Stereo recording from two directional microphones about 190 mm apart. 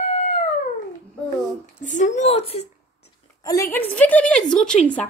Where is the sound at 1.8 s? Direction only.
40° left (ahead or behind).